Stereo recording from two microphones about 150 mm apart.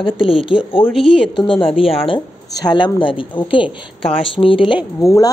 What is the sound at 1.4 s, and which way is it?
Speech, 35° left (ahead or behind).